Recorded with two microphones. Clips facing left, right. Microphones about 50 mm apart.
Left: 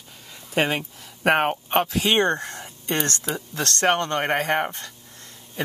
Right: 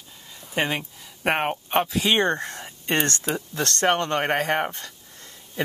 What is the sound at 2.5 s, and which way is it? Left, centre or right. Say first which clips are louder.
Speech: right 2 dB; right.